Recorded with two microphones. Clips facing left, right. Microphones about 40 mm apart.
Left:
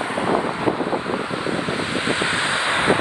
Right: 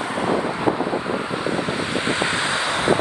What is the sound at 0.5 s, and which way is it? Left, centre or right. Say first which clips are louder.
Vehicle: even; centre.